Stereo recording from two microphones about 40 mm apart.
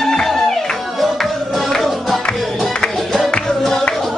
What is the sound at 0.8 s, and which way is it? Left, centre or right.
Music, centre.